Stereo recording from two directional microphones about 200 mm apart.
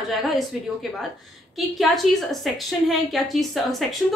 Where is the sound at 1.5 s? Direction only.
Centre (ahead or behind).